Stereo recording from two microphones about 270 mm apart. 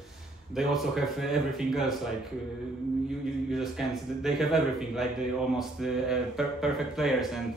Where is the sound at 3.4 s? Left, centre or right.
Centre.